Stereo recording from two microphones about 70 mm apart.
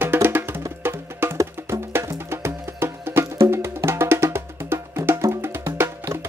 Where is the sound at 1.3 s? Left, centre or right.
Right.